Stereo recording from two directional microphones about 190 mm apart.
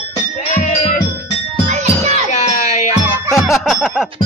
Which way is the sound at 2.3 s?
35° left (ahead or behind).